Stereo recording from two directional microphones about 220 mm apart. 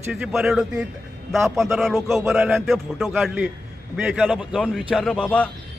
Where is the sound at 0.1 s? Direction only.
5° right (ahead or behind).